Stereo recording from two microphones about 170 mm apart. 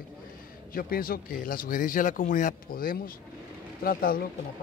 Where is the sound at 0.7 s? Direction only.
60° left (ahead or behind).